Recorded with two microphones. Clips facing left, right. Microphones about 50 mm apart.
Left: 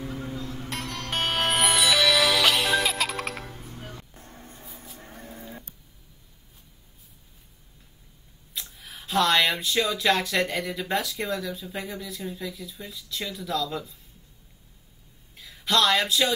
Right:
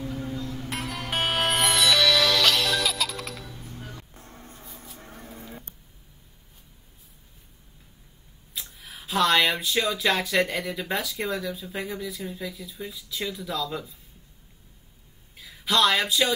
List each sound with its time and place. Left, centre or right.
0.1 s music: centre
0.4 s music: left
0.7 s music: centre; by 3.6 s left
3.6 s music: left
4.3 s a sound: centre
4.6 s vehicle: centre
8.5 s speech: centre
15.3 s speech: centre